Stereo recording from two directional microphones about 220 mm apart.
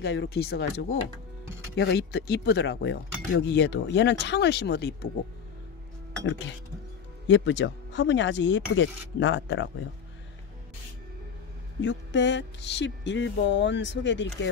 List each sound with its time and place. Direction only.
0.0 s speech: 50° left (ahead or behind)
7.2 s speech: 55° left (ahead or behind)
11.8 s speech: 55° left (ahead or behind)